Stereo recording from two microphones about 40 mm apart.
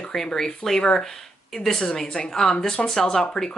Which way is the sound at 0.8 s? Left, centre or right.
Left.